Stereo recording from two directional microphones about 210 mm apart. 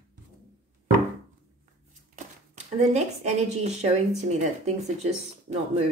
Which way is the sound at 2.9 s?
30° right (ahead or behind).